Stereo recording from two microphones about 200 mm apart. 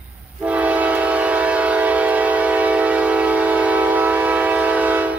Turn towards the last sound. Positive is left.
turn(degrees=-5)  # may be behind; listen again after turning